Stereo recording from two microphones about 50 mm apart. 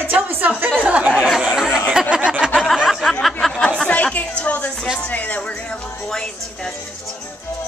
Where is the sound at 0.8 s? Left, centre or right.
Right.